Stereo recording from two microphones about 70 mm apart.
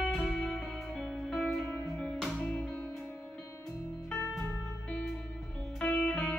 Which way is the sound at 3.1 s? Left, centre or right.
Left.